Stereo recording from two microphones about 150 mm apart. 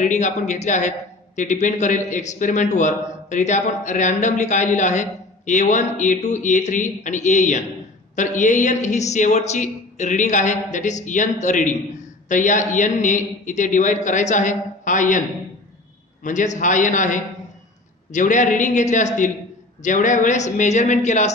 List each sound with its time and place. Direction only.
0.0 s speech: 55° left (ahead or behind)
16.3 s speech: 55° left (ahead or behind)